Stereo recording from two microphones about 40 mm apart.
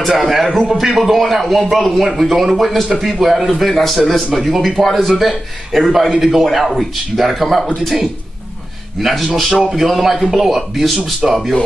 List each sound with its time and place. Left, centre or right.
0.1 s a man's voice: centre
0.5 s a man's voice: centre
0.7 s a man's voice: centre
7.6 s a man's voice: centre
9.0 s a man's voice: centre